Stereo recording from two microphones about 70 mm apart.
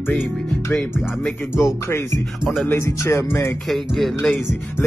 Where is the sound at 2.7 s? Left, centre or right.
Left.